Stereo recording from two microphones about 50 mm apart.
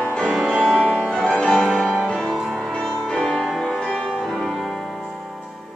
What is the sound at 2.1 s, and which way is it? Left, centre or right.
Music, centre.